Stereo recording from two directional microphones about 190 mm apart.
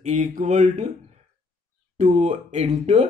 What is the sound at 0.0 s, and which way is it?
Speech, 40° right (ahead or behind).